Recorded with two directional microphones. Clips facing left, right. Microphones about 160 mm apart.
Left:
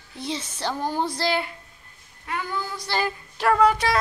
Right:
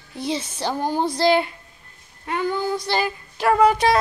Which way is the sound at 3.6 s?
20° right (ahead or behind).